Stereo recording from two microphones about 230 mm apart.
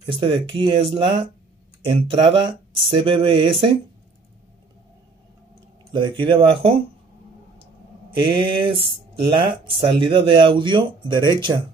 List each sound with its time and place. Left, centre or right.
0.0 s speech: right
5.9 s speech: right
8.2 s speech: right